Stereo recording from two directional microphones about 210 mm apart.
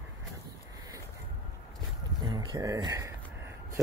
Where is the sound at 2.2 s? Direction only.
20° right (ahead or behind).